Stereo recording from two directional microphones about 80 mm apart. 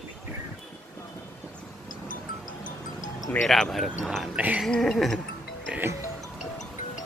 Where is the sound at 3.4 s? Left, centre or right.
Centre.